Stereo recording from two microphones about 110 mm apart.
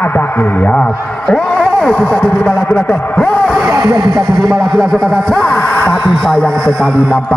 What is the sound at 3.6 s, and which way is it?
Speech, 35° right (ahead or behind).